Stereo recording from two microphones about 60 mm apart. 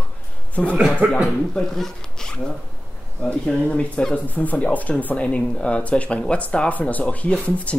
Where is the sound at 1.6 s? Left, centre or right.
Centre.